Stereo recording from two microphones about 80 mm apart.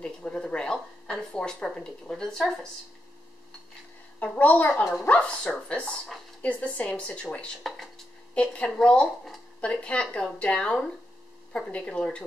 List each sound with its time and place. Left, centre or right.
0.0 s a sound: centre
4.2 s a woman's voice: centre
7.6 s dishes: centre
8.4 s speech: centre